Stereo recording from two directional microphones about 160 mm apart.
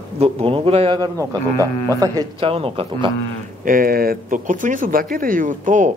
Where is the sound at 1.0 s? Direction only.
20° right (ahead or behind).